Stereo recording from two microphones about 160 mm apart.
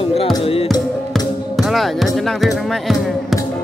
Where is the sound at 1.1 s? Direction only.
Centre (ahead or behind).